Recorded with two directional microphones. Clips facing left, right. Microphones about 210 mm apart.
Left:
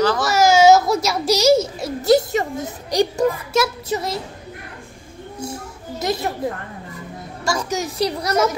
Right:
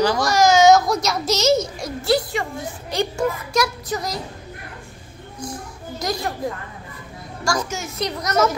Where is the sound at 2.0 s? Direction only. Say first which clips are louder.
Left 5 dB; 45° left (ahead or behind).